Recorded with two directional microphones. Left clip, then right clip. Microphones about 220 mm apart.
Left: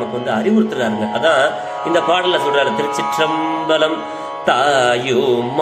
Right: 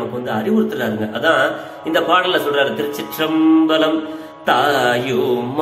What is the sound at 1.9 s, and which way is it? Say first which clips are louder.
Speech: even; 15° left (ahead or behind).